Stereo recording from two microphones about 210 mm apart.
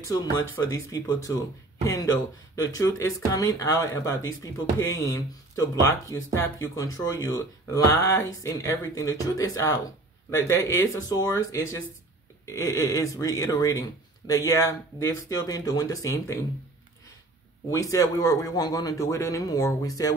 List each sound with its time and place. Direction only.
0.1 s speech: 20° left (ahead or behind)
17.6 s speech: 15° left (ahead or behind)